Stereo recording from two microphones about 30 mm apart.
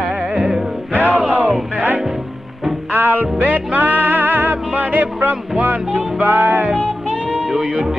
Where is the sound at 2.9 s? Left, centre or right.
Right.